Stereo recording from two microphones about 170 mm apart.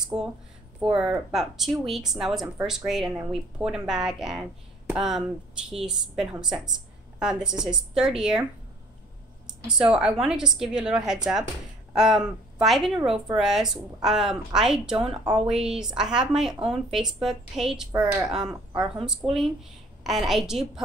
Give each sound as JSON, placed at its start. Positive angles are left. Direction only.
{"t": 0.0, "sound": "speech", "side_deg": -5}
{"t": 9.7, "sound": "speech", "side_deg": -5}